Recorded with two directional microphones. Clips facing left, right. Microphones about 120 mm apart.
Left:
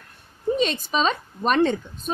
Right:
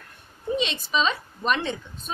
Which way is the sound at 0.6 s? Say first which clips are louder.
Left 1 dB; 45° left (ahead or behind).